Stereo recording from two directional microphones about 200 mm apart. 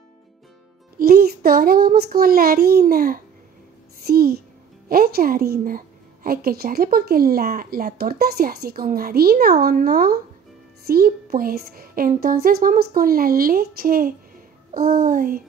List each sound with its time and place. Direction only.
0.9 s a woman's voice: 50° right (ahead or behind)